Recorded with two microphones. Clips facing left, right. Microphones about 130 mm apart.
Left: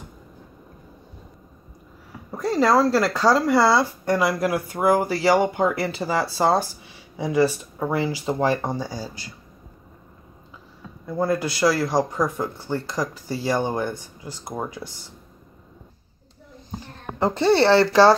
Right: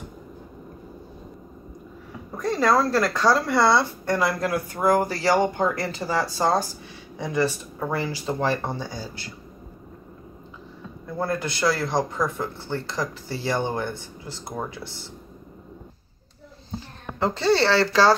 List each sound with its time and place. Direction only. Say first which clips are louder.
2.3 s a man's voice: left 2 dB; 10° left (ahead or behind)
11.1 s a man's voice: left 4 dB; 10° left (ahead or behind)
17.2 s speech: left 3 dB; 20° left (ahead or behind)